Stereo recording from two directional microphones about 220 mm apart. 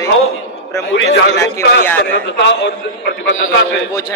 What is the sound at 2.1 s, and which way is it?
A man's voice, 55° left (ahead or behind).